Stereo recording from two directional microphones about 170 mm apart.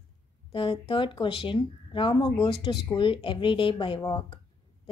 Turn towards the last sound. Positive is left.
turn(degrees=30)  # may be behind; listen again after turning